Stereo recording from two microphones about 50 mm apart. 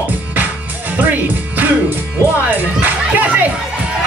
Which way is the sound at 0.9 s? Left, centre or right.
Right.